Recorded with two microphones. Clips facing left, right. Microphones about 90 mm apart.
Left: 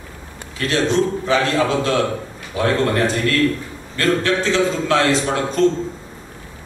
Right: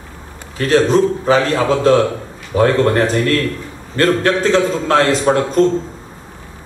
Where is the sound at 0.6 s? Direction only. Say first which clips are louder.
Right 6 dB; 40° right (ahead or behind).